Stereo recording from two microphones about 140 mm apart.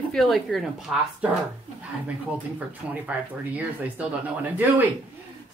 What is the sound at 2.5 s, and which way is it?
Speech, 10° right (ahead or behind).